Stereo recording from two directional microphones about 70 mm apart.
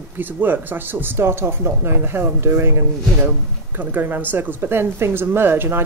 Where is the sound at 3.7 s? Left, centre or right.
Right.